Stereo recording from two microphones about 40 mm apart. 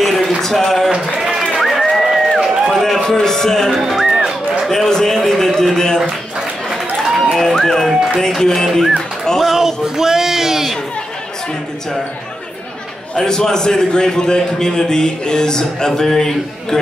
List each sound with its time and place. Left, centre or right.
0.0 s a sound: centre
0.4 s speech: centre
1.6 s music: centre
2.7 s a man's voice: centre
3.8 s speech: centre
4.6 s a sound: centre
6.7 s a sound: centre
7.3 s a man's voice: centre
9.4 s speech: centre
13.1 s a man's voice: centre